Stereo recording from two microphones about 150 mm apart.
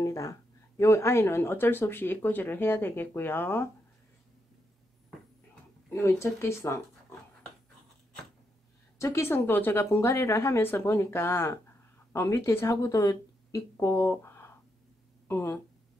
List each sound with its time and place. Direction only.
0.0 s speech: 20° left (ahead or behind)
5.9 s speech: 20° left (ahead or behind)
8.9 s speech: 20° left (ahead or behind)